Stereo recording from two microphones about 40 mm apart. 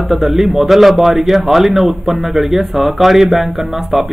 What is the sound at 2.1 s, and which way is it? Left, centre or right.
Speech, right.